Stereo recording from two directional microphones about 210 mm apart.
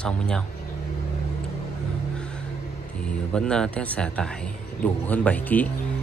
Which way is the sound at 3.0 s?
5° left (ahead or behind).